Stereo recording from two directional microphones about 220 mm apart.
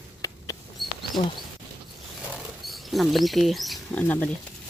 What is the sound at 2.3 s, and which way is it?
Mouse, centre (ahead or behind).